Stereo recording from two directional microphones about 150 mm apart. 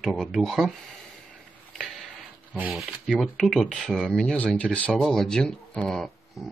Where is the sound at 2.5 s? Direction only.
5° right (ahead or behind).